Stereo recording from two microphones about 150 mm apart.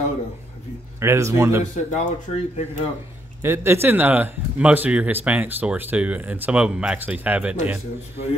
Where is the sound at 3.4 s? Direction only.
15° right (ahead or behind).